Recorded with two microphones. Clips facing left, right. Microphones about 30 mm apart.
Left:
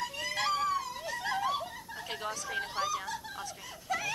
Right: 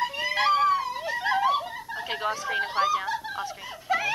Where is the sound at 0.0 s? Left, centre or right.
Right.